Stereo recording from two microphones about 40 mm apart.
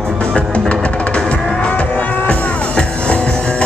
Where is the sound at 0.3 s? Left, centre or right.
Left.